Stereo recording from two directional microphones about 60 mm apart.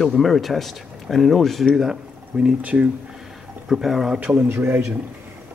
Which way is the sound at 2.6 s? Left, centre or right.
Right.